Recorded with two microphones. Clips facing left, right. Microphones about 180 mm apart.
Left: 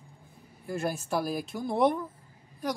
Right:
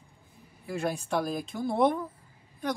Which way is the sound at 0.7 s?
Centre (ahead or behind).